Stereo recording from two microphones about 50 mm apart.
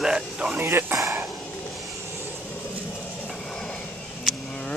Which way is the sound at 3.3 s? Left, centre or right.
Centre.